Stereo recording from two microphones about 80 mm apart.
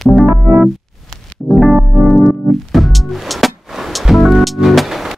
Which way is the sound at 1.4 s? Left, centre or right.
Centre.